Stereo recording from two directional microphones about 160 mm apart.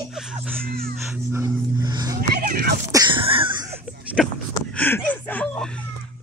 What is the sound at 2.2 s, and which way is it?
Music, 75° right (ahead or behind).